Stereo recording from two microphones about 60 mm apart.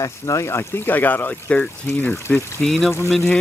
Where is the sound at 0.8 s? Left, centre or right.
Left.